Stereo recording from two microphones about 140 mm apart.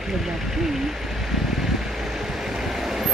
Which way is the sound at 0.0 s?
5° right (ahead or behind).